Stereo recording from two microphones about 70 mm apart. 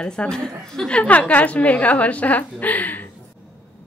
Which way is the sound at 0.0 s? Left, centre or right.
Centre.